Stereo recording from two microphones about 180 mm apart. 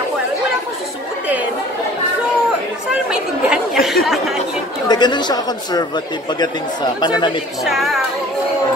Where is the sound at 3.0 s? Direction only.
5° right (ahead or behind).